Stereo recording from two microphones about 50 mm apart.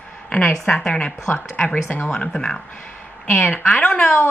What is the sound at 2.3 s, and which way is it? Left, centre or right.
Speech, centre.